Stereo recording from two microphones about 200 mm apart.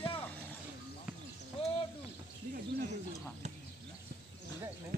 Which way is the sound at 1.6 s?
25° left (ahead or behind).